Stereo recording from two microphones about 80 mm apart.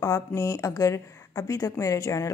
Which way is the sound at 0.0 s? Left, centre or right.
Left.